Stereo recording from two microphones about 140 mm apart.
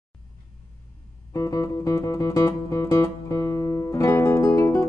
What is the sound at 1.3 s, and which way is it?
Music, 25° left (ahead or behind).